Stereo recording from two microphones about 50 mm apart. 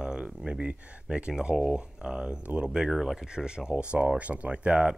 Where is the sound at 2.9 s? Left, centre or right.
Centre.